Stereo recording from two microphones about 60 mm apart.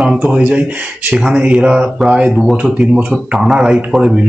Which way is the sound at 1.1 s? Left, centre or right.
Centre.